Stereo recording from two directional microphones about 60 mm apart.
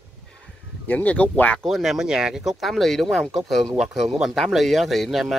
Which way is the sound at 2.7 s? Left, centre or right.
Centre.